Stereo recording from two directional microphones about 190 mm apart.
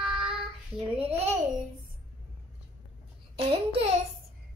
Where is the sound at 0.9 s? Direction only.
30° right (ahead or behind).